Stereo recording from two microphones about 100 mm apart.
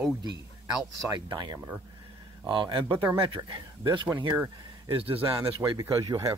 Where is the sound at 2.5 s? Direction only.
60° right (ahead or behind).